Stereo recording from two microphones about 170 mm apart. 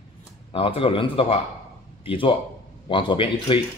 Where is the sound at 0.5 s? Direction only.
35° left (ahead or behind).